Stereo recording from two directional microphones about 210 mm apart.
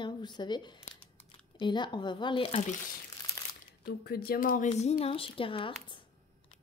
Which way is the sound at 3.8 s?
50° left (ahead or behind).